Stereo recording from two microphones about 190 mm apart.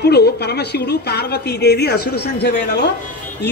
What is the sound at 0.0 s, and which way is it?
A man's voice, 60° left (ahead or behind).